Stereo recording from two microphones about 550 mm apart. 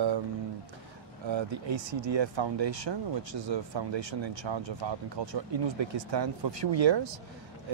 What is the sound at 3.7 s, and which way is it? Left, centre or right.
Speech, right.